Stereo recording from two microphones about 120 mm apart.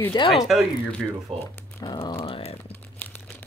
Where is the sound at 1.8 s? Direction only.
40° left (ahead or behind).